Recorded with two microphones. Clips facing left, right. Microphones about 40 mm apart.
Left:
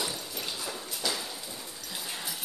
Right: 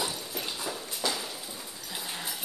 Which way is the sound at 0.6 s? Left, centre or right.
Centre.